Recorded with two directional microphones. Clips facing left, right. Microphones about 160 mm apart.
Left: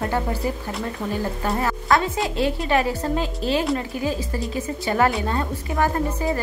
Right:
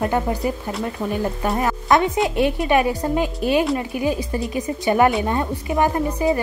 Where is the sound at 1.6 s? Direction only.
20° right (ahead or behind).